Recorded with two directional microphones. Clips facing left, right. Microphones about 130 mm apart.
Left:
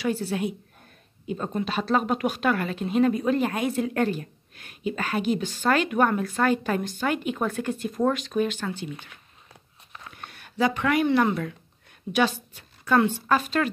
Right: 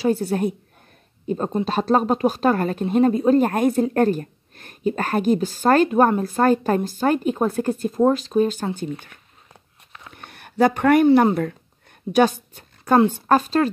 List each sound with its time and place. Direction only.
0.0 s a woman's voice: 45° right (ahead or behind)
10.1 s a sound: 50° right (ahead or behind)
11.2 s a woman's voice: 45° right (ahead or behind)